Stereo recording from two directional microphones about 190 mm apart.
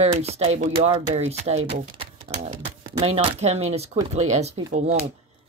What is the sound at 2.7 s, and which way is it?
Speech, 35° right (ahead or behind).